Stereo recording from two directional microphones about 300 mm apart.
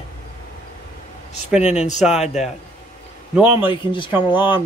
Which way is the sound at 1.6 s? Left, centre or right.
Left.